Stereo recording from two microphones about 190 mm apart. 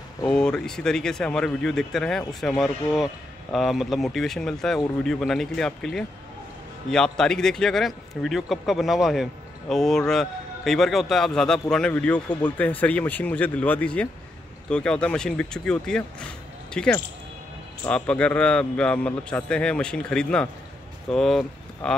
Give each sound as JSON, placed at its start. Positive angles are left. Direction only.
{"t": 0.3, "sound": "a man's voice", "side_deg": 5}